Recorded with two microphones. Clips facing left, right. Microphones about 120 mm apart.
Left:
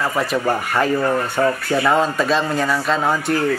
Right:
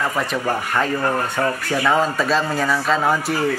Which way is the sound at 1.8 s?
Centre (ahead or behind).